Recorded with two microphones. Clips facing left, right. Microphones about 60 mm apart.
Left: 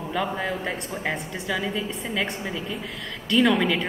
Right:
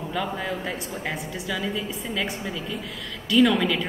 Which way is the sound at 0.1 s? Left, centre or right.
Centre.